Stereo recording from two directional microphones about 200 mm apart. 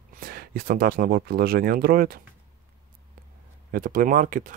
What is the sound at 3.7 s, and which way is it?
Speech, 45° right (ahead or behind).